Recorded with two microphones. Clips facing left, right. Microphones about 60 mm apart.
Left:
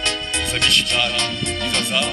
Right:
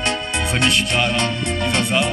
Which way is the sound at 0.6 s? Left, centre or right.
Centre.